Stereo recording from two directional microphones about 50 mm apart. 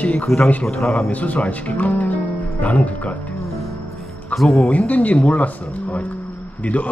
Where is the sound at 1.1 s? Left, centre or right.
Left.